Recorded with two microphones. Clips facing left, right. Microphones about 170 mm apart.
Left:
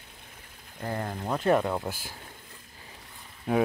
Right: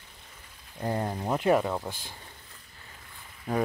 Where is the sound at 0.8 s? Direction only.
20° right (ahead or behind); by 2.1 s 5° left (ahead or behind).